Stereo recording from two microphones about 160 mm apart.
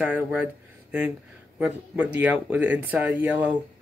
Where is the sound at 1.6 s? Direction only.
5° right (ahead or behind).